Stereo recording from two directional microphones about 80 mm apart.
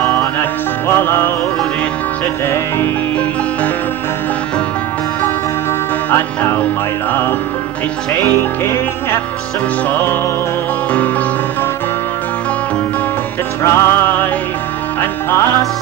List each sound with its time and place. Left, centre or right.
0.0 s music: left
6.0 s music: left
13.6 s music: left